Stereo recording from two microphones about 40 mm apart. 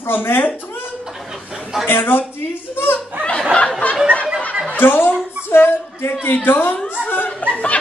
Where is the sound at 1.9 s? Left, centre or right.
Left.